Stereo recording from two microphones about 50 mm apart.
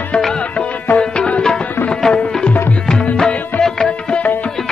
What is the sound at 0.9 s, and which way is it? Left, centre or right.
Tabla, centre.